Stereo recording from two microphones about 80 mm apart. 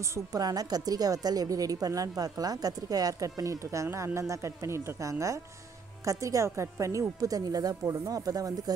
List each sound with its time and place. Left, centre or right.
0.1 s a woman's voice: right